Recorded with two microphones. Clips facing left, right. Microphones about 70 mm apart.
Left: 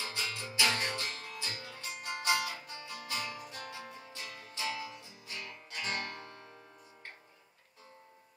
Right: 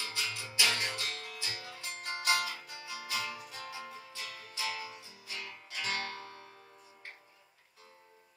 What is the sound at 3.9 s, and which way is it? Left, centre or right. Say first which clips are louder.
Music: right 1 dB; left.